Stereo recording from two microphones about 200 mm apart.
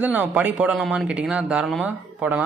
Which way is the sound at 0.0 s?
10° right (ahead or behind).